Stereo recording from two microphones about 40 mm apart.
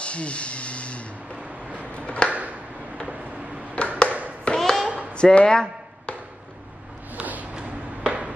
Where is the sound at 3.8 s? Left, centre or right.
Left.